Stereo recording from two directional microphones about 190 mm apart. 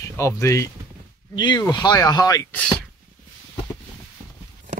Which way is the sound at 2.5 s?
5° left (ahead or behind).